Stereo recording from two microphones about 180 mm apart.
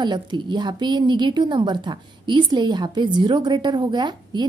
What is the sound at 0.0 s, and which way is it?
A woman's voice, 25° right (ahead or behind).